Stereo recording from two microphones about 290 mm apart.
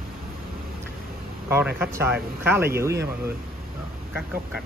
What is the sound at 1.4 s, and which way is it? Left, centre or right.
Speech, centre.